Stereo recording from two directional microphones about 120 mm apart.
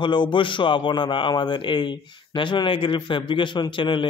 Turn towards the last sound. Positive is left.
turn(degrees=40)  # may be behind; listen again after turning